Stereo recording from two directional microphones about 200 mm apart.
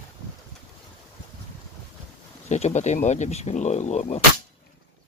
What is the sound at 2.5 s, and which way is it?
Speech, 35° left (ahead or behind).